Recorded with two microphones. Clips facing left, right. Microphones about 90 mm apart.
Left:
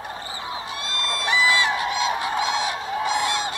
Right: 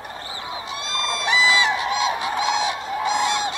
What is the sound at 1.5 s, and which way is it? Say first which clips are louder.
Fowl: right 1 dB; 20° right (ahead or behind).